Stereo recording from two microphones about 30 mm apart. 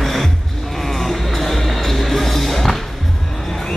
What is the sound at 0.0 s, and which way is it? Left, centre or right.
Music, centre.